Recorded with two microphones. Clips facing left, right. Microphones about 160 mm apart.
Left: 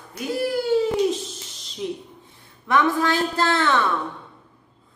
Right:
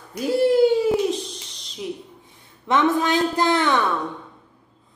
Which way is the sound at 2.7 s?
20° right (ahead or behind).